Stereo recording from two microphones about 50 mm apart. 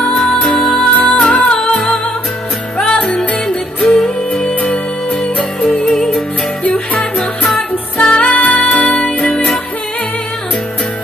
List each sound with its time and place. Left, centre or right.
0.1 s music: centre
0.9 s music: left
2.8 s music: left
3.9 s music: centre
4.6 s music: left
5.9 s music: centre